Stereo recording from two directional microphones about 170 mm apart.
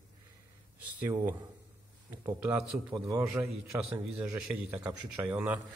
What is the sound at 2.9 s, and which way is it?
A man's voice, 20° right (ahead or behind).